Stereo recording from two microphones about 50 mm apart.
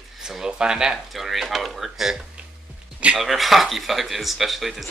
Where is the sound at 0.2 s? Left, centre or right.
Centre.